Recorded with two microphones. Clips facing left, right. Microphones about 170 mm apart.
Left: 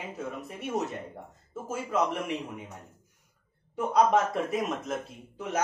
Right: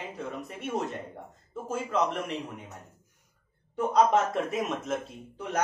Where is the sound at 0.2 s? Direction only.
5° left (ahead or behind).